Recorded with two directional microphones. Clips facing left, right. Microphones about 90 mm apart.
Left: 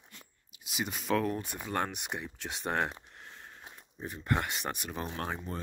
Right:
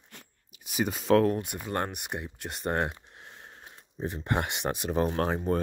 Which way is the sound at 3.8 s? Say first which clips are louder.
Right 8 dB; 30° right (ahead or behind).